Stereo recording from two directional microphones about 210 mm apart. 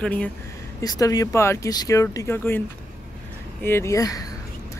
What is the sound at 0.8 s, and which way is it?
Speech, 15° left (ahead or behind).